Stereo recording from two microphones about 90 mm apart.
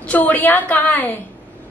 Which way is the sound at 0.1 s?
20° left (ahead or behind).